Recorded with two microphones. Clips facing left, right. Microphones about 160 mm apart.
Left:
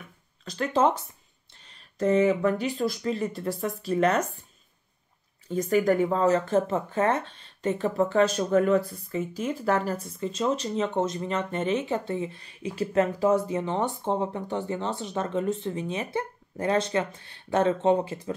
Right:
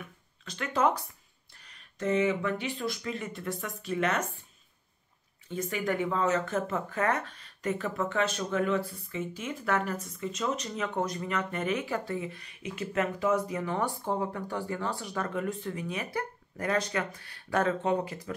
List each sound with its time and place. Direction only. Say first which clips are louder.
0.5 s speech: left 4 dB; 30° left (ahead or behind)
5.5 s speech: left 8 dB; 40° left (ahead or behind)